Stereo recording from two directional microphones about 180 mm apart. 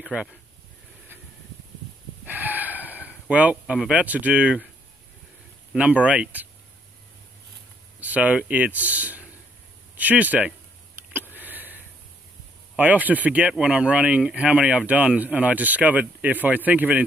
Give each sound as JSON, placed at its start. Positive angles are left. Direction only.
{"t": 2.2, "sound": "gasp", "side_deg": -10}
{"t": 3.3, "sound": "speech", "side_deg": -10}
{"t": 5.7, "sound": "speech", "side_deg": -5}
{"t": 8.0, "sound": "speech", "side_deg": -10}
{"t": 11.1, "sound": "a sound", "side_deg": -10}
{"t": 12.7, "sound": "speech", "side_deg": -10}